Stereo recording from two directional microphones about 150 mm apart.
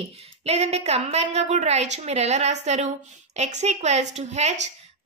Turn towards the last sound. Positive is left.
turn(degrees=-50)  # may be behind; listen again after turning